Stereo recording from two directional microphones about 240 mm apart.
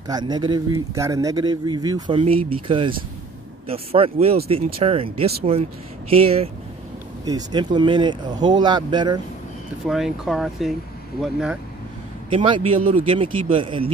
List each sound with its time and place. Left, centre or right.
0.1 s speech: centre
9.8 s speech: centre
12.3 s speech: right